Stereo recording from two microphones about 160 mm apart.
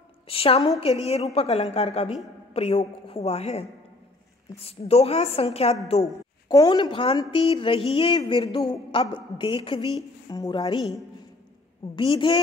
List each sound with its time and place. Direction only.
0.3 s a woman's voice: 35° left (ahead or behind)
6.0 s a woman's voice: 20° left (ahead or behind)
11.9 s a woman's voice: 30° left (ahead or behind)